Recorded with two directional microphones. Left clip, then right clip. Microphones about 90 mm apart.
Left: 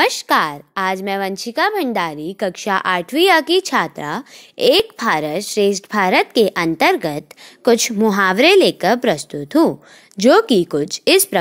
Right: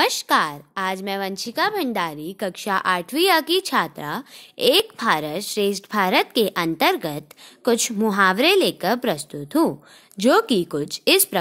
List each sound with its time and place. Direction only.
0.0 s a woman's voice: 35° left (ahead or behind)
8.1 s a woman's voice: 50° left (ahead or behind)